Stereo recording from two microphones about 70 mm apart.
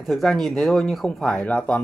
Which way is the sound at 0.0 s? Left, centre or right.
Centre.